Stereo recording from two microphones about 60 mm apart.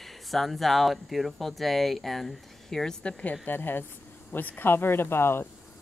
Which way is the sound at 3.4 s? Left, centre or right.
Left.